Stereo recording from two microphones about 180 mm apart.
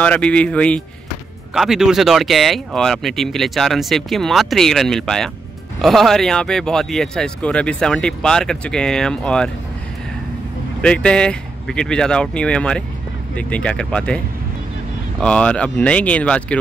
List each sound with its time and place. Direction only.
0.0 s speech: 5° left (ahead or behind)
10.8 s speech: 5° left (ahead or behind)